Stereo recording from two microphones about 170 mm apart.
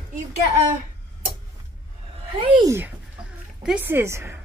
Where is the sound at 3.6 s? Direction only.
10° right (ahead or behind).